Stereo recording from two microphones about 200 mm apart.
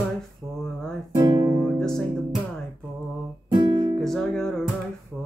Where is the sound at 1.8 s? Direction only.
5° left (ahead or behind).